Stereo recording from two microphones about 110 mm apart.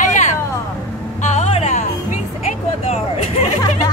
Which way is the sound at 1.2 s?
85° left.